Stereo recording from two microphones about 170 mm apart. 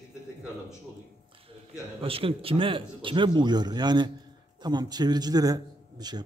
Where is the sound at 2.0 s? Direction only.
35° right (ahead or behind).